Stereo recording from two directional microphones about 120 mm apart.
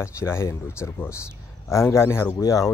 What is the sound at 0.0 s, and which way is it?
Speech, 20° left (ahead or behind).